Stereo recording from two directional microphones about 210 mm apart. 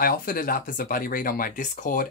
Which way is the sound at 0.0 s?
45° left (ahead or behind).